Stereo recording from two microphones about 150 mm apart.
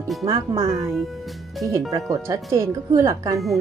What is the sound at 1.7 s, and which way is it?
Speech, 20° right (ahead or behind).